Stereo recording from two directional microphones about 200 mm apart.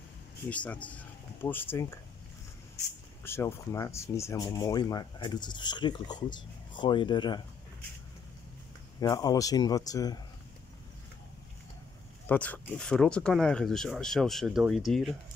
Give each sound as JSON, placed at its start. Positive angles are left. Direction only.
{"t": 0.5, "sound": "speech", "side_deg": 5}
{"t": 3.3, "sound": "speech", "side_deg": 15}
{"t": 9.0, "sound": "speech", "side_deg": 20}
{"t": 12.3, "sound": "speech", "side_deg": 5}